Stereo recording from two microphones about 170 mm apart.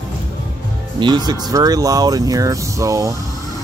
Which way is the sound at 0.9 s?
25° right (ahead or behind).